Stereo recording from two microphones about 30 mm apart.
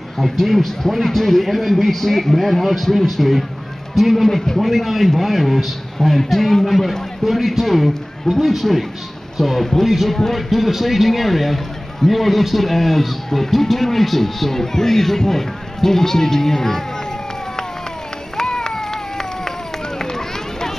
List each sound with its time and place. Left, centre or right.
0.2 s a man's voice: centre
18.4 s a sound: left
20.0 s run: centre